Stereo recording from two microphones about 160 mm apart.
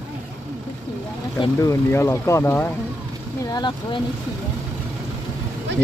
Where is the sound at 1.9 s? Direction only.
15° left (ahead or behind).